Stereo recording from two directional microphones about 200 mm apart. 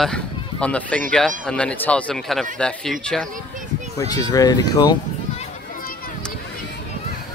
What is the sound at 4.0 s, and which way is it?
Speech, 20° left (ahead or behind).